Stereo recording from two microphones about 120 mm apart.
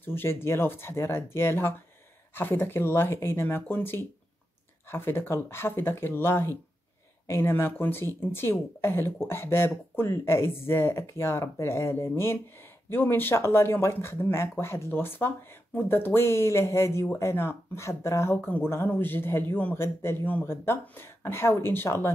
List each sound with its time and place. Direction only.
0.0 s speech: 20° left (ahead or behind)